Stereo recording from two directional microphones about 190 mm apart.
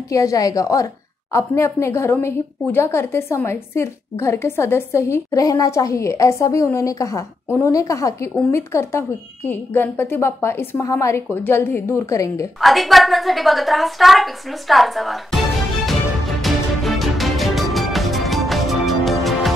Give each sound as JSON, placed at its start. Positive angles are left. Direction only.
{"t": 0.1, "sound": "a woman's voice", "side_deg": 15}
{"t": 12.5, "sound": "a woman's voice", "side_deg": 0}
{"t": 16.3, "sound": "music", "side_deg": 0}